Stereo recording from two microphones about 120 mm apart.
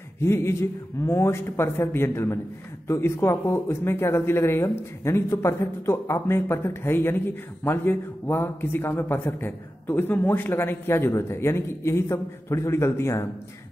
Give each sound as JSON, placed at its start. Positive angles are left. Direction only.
{"t": 0.2, "sound": "speech", "side_deg": 20}